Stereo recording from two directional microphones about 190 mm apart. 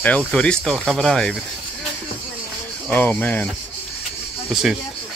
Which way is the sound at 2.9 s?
10° left (ahead or behind).